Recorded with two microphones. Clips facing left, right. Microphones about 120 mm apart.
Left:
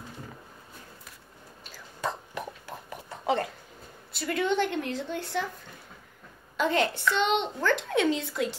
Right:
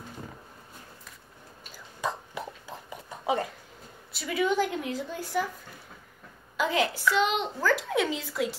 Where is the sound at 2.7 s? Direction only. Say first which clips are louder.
Left 1 dB; 15° right (ahead or behind).